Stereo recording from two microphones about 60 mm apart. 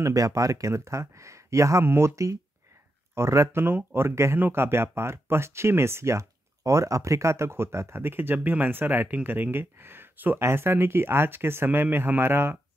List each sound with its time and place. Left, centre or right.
0.0 s speech: right
3.6 s speech: right